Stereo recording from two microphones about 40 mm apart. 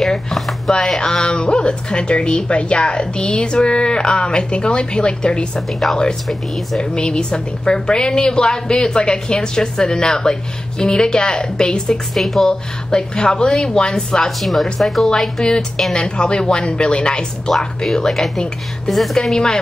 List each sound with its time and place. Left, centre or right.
0.0 s a sound: centre
0.8 s a woman's voice: centre
6.2 s speech: centre
6.8 s a woman's voice: left
12.1 s speech: centre
12.4 s a woman's voice: left
14.4 s speech: centre
15.1 s a woman's voice: centre
17.5 s speech: centre
19.3 s a woman's voice: centre